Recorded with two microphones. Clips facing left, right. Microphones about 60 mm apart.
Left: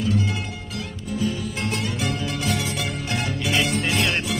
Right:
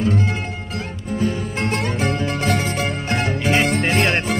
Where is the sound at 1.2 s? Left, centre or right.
Right.